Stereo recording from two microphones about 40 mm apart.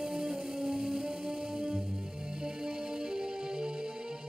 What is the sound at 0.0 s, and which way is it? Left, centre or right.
Music, centre.